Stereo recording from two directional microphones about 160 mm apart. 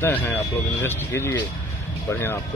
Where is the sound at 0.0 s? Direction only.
10° left (ahead or behind).